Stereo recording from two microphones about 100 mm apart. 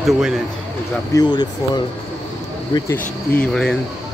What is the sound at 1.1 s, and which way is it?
Speech, 40° left (ahead or behind).